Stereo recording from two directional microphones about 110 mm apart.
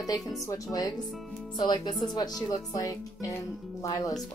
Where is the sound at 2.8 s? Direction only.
30° left (ahead or behind).